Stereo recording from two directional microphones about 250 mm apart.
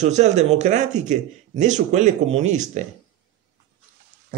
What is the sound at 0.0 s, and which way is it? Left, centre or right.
Speech, right.